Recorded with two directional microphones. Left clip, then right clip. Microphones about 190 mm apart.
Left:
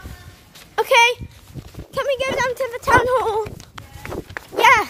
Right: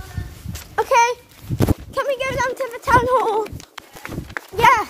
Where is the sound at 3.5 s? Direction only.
55° right (ahead or behind).